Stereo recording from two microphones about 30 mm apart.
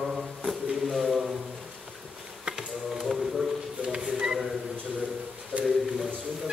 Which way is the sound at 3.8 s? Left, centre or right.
Right.